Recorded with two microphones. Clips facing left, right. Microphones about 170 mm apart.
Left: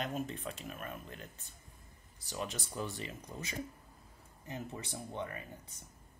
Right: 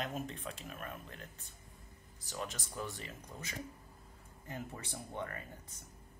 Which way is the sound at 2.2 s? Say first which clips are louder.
Left 2 dB; 30° left (ahead or behind).